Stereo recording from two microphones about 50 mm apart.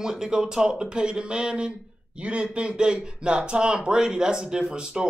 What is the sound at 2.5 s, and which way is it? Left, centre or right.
Speech, centre.